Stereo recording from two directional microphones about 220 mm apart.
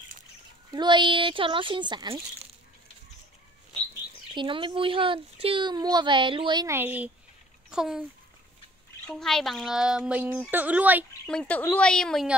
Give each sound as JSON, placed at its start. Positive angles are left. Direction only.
{"t": 0.7, "sound": "speech", "side_deg": -20}
{"t": 4.4, "sound": "speech", "side_deg": -25}
{"t": 9.0, "sound": "speech", "side_deg": 0}
{"t": 11.2, "sound": "speech", "side_deg": 5}